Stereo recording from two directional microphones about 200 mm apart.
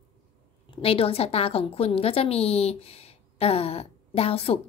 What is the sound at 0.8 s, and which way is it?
A woman's voice, 30° left (ahead or behind).